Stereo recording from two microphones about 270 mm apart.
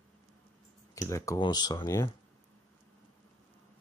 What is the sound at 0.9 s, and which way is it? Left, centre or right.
Speech, centre.